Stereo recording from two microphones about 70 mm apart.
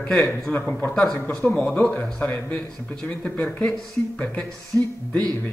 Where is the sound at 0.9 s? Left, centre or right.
Centre.